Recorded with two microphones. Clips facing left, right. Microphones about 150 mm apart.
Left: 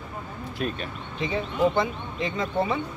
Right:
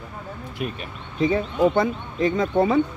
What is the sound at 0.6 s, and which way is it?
Speech, 15° right (ahead or behind).